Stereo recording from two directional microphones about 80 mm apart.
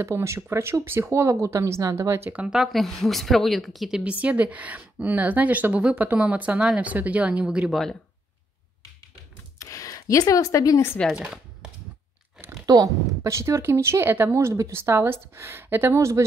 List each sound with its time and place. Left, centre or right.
0.0 s speech: right
2.3 s speech: centre
4.0 s speech: centre
9.6 s a sound: left
11.0 s speech: centre
12.6 s speech: right